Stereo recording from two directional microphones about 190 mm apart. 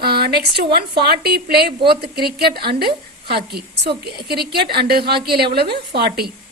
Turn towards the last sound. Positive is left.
turn(degrees=-55)  # may be behind; listen again after turning